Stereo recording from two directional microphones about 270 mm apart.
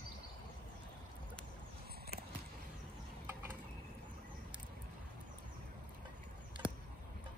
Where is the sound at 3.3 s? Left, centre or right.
Centre.